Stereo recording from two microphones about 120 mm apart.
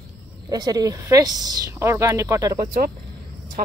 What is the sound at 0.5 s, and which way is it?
Speech, 30° right (ahead or behind).